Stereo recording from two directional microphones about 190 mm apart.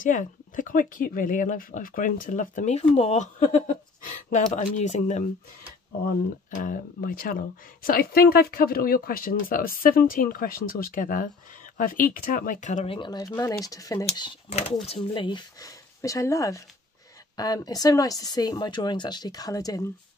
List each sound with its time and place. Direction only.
0.0 s speech: 45° left (ahead or behind); by 19.8 s 20° left (ahead or behind)